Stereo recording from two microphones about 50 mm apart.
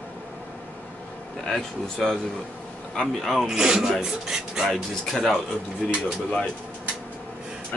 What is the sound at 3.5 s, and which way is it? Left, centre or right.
Speech, centre.